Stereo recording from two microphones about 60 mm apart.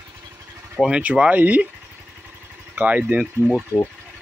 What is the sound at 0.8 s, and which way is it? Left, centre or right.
Speech, centre.